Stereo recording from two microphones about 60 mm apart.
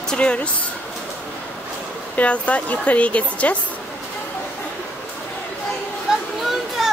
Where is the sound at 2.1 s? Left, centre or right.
Left.